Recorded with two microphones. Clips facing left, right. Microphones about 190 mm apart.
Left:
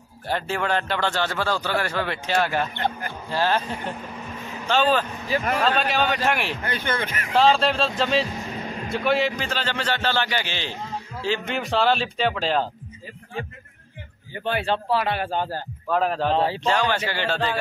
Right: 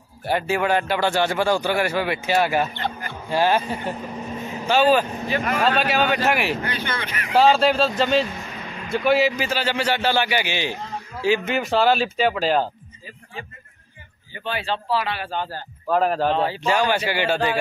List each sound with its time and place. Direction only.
0.3 s a man's voice: 10° right (ahead or behind)
2.7 s speech: 55° left (ahead or behind)
3.3 s a man's voice: 15° right (ahead or behind)
5.3 s speech: 35° left (ahead or behind)
5.6 s speech: 5° right (ahead or behind)
6.6 s speech: 50° left (ahead or behind)
7.3 s speech: 5° right (ahead or behind)
8.5 s music: 40° left (ahead or behind)
8.9 s a man's voice: centre (ahead or behind)
14.4 s speech: 55° left (ahead or behind)
15.9 s a man's voice: 5° right (ahead or behind)